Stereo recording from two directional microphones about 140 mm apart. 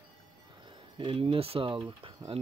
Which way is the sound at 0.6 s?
35° right (ahead or behind).